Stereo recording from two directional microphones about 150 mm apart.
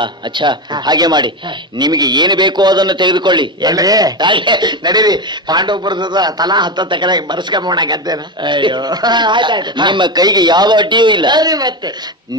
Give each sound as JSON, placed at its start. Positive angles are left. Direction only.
{"t": 0.0, "sound": "a man's voice", "side_deg": -30}